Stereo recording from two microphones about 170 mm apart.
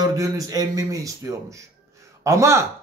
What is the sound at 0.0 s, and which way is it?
A man's voice, 20° right (ahead or behind).